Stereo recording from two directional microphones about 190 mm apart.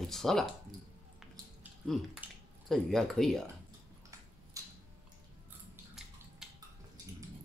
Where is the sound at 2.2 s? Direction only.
10° right (ahead or behind).